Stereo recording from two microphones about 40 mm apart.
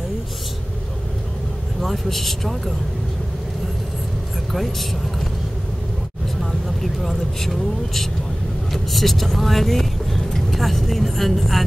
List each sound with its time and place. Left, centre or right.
1.8 s speech: centre
4.5 s speech: centre
6.8 s speech: centre